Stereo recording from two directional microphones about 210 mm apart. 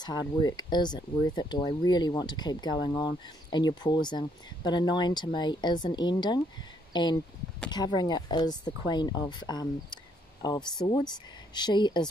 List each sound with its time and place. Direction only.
0.0 s speech: 20° left (ahead or behind)